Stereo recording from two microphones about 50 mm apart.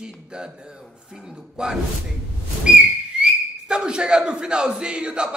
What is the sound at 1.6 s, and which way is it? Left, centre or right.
Speech, centre.